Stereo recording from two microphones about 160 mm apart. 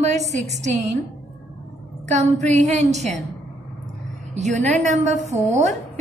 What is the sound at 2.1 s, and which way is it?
Speech, 45° right (ahead or behind).